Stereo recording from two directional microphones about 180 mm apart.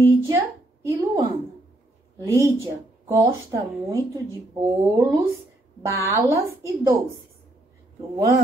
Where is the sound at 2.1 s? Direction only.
15° right (ahead or behind).